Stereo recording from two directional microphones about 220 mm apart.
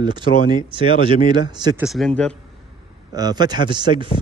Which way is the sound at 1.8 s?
Centre (ahead or behind).